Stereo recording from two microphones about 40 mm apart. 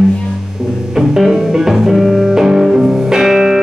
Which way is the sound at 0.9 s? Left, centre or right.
Centre.